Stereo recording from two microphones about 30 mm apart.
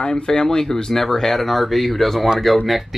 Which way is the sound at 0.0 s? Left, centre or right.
Left.